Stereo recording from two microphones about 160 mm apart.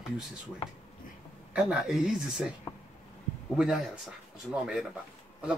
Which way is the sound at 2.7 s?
25° left (ahead or behind).